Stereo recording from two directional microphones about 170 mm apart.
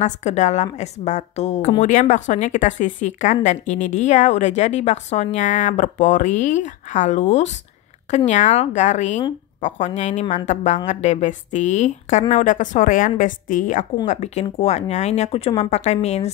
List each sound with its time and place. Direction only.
0.0 s a woman's voice: 45° left (ahead or behind)